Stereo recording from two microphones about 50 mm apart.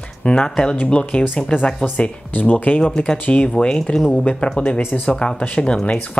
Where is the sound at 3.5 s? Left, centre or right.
Centre.